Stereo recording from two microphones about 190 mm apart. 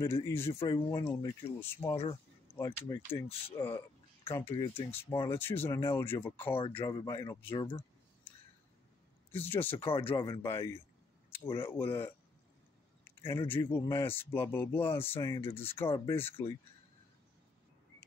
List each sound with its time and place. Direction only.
0.0 s a man's voice: 15° left (ahead or behind)
1.0 s a man's voice: 10° left (ahead or behind)
9.3 s speech: 10° left (ahead or behind)
9.8 s a man's voice: 25° left (ahead or behind)
10.0 s speech: 15° left (ahead or behind)
15.4 s a man's voice: 30° left (ahead or behind)
15.7 s speech: 10° left (ahead or behind)